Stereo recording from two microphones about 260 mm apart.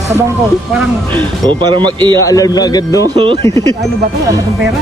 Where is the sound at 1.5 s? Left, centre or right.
Centre.